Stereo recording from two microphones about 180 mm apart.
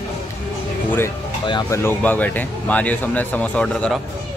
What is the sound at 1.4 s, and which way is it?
Speech, 25° left (ahead or behind).